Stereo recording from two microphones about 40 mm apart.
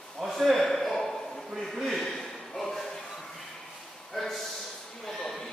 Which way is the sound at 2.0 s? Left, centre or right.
Centre.